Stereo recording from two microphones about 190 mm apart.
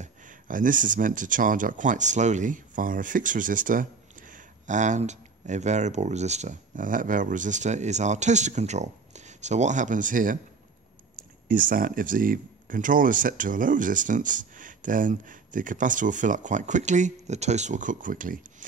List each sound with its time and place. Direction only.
0.0 s speech: 45° right (ahead or behind)
11.4 s speech: 45° right (ahead or behind)